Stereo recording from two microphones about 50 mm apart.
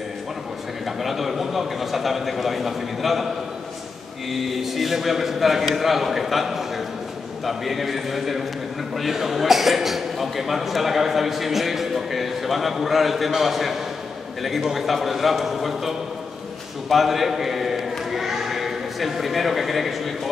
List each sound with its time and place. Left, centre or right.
0.8 s a man's voice: centre
4.3 s a man's voice: centre
16.9 s a sound: centre